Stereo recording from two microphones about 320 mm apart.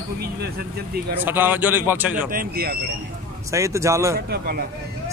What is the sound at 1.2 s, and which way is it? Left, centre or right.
Speech, centre.